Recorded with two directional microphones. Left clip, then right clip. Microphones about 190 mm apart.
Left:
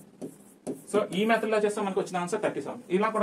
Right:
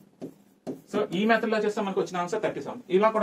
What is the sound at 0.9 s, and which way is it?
Speech, 15° left (ahead or behind).